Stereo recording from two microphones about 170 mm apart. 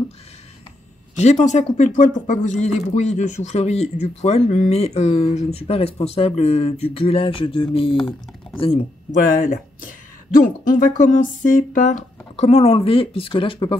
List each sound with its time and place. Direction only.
1.1 s speech: 40° left (ahead or behind)
9.2 s speech: 55° left (ahead or behind); by 13.7 s 30° left (ahead or behind)